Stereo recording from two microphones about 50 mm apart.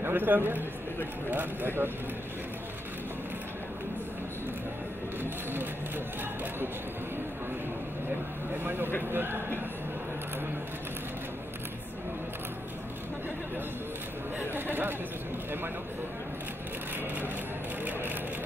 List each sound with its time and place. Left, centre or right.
0.0 s a man's voice: right
5.2 s speech: right
8.6 s speech: right
14.4 s speech: right